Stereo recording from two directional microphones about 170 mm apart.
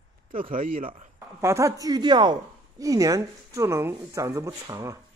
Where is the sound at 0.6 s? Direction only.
55° right (ahead or behind).